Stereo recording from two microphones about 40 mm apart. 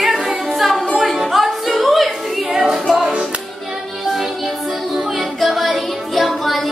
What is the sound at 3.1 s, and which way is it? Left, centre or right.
Music, right.